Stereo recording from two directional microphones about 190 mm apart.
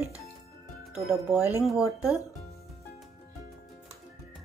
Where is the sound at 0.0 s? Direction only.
15° left (ahead or behind).